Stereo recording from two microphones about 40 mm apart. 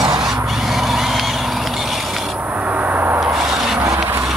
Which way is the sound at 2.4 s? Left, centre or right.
Right.